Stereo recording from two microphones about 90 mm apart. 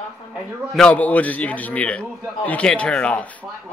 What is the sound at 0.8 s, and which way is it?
A man's voice, 15° left (ahead or behind).